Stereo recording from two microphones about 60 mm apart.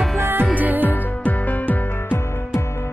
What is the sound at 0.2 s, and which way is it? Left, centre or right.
Music, right.